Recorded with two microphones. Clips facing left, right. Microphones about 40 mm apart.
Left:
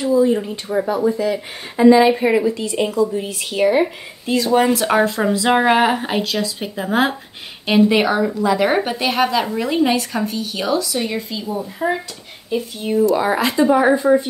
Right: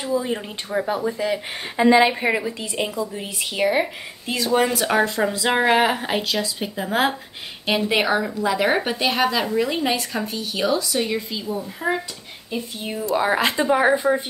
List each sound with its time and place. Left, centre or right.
0.0 s speech: centre
0.7 s speech: centre
1.3 s speech: right
2.0 s a woman's voice: centre
13.4 s a woman's voice: right